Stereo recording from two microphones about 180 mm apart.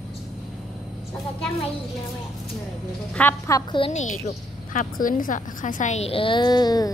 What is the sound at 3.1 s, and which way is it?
Speech, 10° left (ahead or behind).